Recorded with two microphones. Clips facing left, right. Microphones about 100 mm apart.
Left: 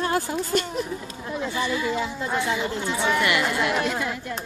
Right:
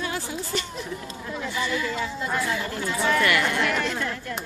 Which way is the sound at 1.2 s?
20° left (ahead or behind).